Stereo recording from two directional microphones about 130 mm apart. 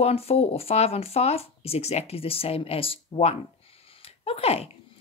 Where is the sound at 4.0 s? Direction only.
50° left (ahead or behind).